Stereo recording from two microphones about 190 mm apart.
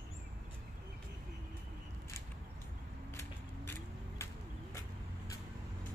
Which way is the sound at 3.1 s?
15° left (ahead or behind).